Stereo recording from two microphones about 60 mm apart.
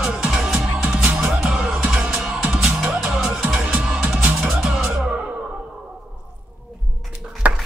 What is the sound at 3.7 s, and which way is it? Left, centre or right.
Music, right.